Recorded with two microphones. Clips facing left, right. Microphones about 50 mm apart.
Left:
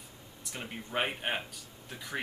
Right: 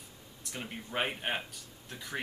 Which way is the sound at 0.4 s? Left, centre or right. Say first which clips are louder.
Even; centre.